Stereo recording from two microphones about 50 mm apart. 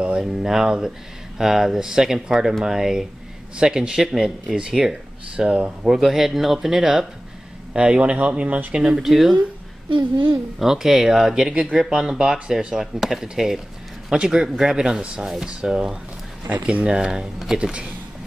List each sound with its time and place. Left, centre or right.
0.2 s speech: centre
7.7 s speech: right
8.7 s speech: centre
10.6 s speech: centre
16.4 s speech: right; by 17.6 s centre
17.6 s speech: right